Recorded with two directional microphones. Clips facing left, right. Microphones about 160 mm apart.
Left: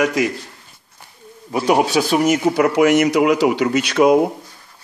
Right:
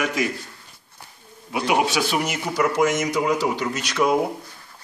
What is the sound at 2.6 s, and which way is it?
Speech, 70° left (ahead or behind).